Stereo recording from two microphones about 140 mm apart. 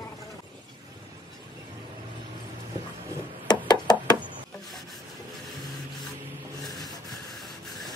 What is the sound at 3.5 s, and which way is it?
Knock, 30° left (ahead or behind).